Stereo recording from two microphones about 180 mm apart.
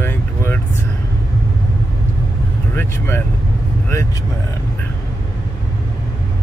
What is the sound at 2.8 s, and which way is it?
Speech, 10° left (ahead or behind).